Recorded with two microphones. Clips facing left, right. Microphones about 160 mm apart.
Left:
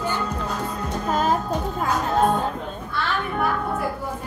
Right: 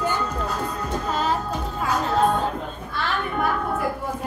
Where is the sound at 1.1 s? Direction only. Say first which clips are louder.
Left 4 dB; 50° left (ahead or behind).